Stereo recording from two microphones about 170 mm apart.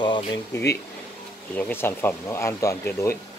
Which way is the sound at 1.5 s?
10° left (ahead or behind).